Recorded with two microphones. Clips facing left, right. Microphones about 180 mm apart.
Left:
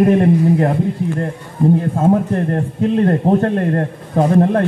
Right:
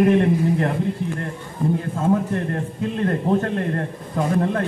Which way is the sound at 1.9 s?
50° left (ahead or behind).